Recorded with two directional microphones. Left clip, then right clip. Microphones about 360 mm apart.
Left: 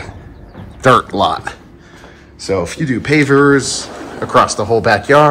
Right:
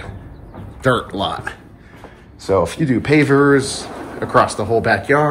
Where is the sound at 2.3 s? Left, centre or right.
Centre.